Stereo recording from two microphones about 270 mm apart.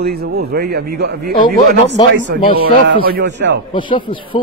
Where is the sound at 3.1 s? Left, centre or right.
Right.